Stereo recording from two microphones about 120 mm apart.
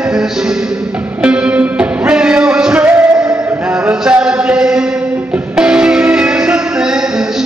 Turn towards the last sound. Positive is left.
turn(degrees=-10)  # may be behind; listen again after turning